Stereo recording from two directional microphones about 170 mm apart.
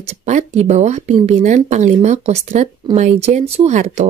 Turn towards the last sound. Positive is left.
turn(degrees=-40)  # may be behind; listen again after turning